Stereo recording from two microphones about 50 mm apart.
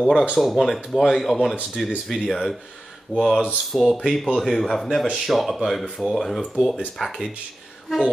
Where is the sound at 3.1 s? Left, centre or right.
Left.